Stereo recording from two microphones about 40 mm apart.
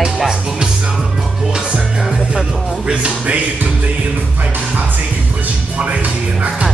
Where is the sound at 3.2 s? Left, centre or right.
Right.